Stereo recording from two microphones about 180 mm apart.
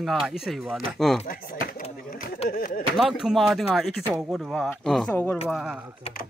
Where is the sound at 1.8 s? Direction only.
40° left (ahead or behind).